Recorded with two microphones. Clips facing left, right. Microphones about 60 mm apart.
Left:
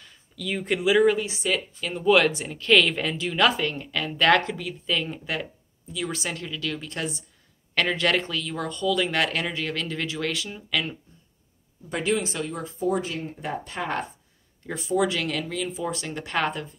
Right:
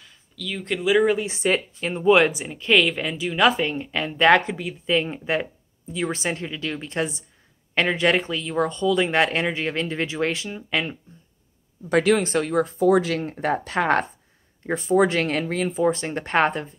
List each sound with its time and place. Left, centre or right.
0.4 s speech: centre
0.9 s speech: centre
1.2 s speech: right
11.9 s speech: right
12.2 s speech: right
12.7 s speech: right
14.7 s speech: right